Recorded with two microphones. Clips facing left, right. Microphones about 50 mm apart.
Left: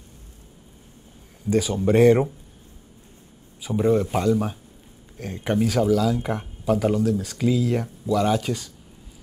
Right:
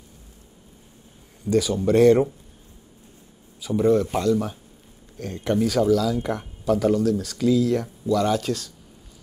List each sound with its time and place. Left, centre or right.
1.5 s speech: centre
3.6 s speech: centre